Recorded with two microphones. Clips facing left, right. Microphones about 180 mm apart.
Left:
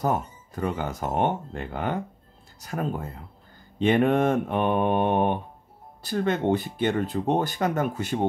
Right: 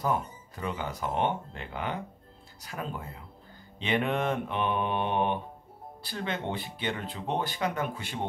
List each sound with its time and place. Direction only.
0.0 s speech: 45° left (ahead or behind)